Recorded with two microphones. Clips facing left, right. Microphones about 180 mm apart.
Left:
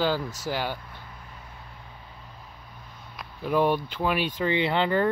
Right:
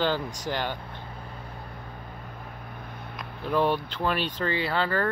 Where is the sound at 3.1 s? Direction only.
5° left (ahead or behind).